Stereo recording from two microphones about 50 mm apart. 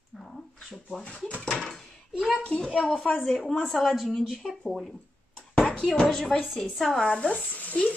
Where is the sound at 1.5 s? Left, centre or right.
Centre.